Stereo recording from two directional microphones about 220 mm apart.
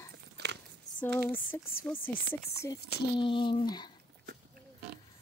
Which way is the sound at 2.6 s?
20° left (ahead or behind).